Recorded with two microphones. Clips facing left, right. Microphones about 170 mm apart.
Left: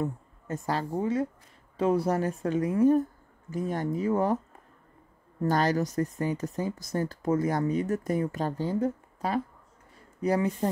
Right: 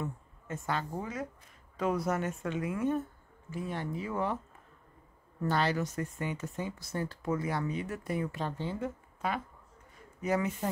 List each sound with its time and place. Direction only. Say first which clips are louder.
0.0 s a woman's voice: left 7 dB; 35° left (ahead or behind)
5.4 s speech: left 5 dB; 40° left (ahead or behind)